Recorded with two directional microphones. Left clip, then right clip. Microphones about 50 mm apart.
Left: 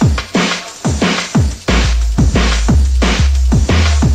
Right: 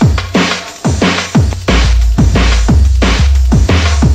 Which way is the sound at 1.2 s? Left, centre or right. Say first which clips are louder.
Right 3 dB; right.